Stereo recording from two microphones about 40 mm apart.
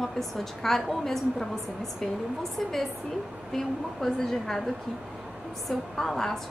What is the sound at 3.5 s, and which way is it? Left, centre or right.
A woman's voice, centre.